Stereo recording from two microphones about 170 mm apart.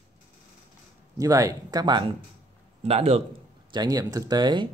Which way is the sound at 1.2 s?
20° right (ahead or behind).